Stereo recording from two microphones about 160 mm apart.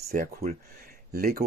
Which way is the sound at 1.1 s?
70° right (ahead or behind).